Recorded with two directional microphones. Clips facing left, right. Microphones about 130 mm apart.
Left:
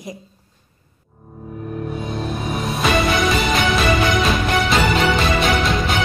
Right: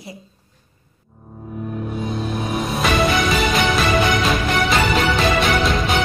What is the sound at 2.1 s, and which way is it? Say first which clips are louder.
Music: right 2 dB; centre (ahead or behind).